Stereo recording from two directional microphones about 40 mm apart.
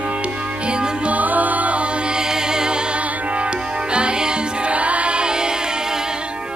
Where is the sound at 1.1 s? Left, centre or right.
Right.